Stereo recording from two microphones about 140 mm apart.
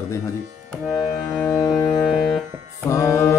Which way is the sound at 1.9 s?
Centre (ahead or behind).